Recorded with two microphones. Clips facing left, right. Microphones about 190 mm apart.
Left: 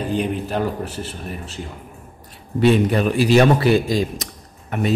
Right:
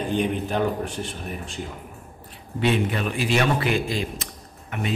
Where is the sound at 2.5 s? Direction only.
40° left (ahead or behind).